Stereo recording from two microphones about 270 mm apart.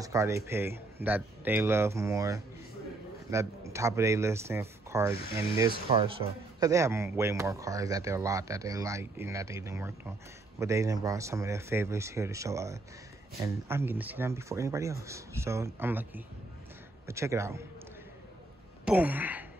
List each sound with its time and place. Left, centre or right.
0.0 s speech: centre
5.9 s speech: right
18.9 s a sound: centre